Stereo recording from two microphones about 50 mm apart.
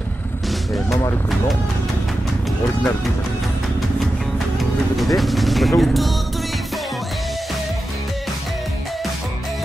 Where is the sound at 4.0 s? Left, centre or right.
Centre.